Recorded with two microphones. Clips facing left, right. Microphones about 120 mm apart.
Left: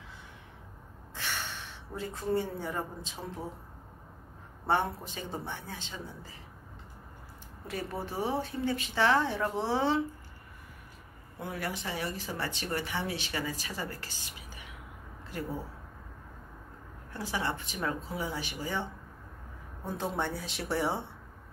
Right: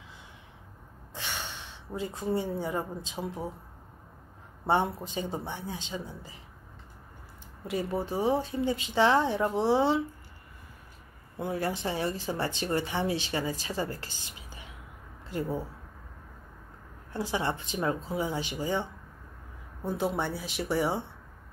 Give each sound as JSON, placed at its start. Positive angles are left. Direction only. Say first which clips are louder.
{"t": 1.1, "sound": "a sound", "louder": "even", "side_deg": -20}
{"t": 4.6, "sound": "speech", "louder": "right 3 dB", "side_deg": -20}
{"t": 7.6, "sound": "speech", "louder": "right 6 dB", "side_deg": -15}
{"t": 11.3, "sound": "speech", "louder": "right 6 dB", "side_deg": -25}
{"t": 17.1, "sound": "speech", "louder": "right 3 dB", "side_deg": -25}
{"t": 19.8, "sound": "speech", "louder": "right 3 dB", "side_deg": -5}